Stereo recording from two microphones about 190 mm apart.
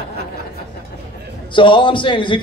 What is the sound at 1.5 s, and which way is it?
Speech, 25° left (ahead or behind).